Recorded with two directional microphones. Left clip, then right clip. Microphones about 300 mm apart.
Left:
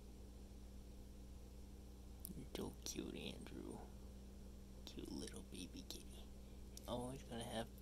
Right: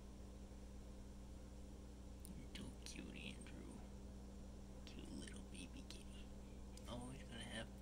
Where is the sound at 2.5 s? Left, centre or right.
Centre.